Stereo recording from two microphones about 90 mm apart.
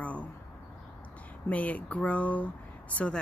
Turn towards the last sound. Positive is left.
turn(degrees=15)  # may be behind; listen again after turning